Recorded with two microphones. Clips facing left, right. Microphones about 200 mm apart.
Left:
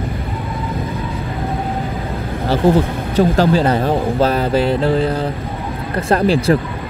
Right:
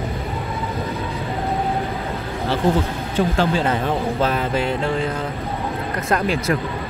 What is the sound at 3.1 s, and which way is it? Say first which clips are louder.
Speech: left 6 dB; 40° left (ahead or behind).